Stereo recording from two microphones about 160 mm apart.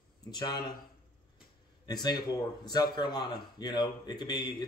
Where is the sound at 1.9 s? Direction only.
25° left (ahead or behind).